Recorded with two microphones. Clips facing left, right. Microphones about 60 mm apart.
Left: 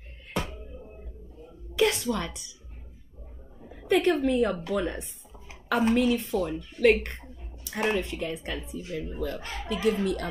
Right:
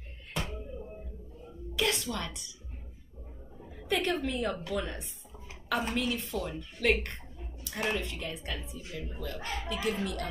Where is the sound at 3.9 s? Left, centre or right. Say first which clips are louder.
Left 8 dB; left.